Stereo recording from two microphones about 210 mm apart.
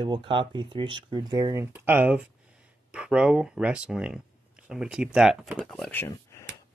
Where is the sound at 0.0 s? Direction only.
25° right (ahead or behind); by 6.4 s 10° left (ahead or behind).